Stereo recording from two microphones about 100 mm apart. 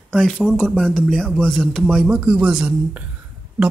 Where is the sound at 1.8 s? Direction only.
10° right (ahead or behind).